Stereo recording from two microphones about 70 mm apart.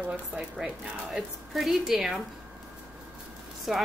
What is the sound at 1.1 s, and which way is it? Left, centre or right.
Speech, centre.